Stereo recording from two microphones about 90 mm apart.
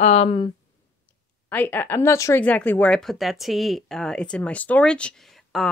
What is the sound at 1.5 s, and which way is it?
Speech, 20° left (ahead or behind).